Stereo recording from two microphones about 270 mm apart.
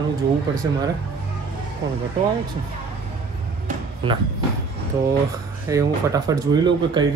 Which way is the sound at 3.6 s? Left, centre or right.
Centre.